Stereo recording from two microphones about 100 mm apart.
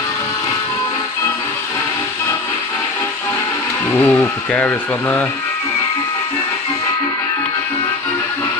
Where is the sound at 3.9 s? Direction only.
15° left (ahead or behind).